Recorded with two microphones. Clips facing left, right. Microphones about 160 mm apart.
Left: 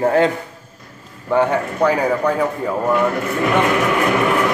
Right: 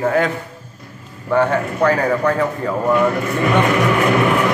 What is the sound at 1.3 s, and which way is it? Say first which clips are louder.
A man's voice: even; 15° left (ahead or behind).